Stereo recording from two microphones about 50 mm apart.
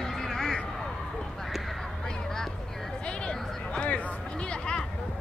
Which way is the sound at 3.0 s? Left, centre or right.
Left.